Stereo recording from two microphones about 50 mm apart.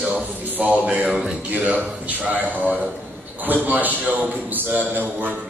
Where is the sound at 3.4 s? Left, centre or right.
Right.